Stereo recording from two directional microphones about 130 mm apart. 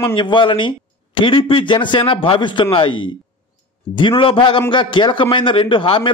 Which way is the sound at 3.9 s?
40° left (ahead or behind).